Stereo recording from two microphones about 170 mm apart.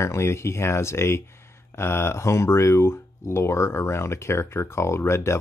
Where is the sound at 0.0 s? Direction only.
15° left (ahead or behind).